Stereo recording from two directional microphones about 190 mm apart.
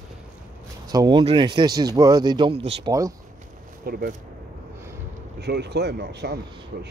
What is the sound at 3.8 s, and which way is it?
Speech, 55° right (ahead or behind).